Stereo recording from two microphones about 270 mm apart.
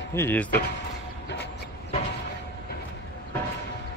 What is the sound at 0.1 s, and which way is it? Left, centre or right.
Speech, centre.